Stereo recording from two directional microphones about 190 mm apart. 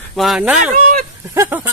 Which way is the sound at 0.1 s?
Centre (ahead or behind).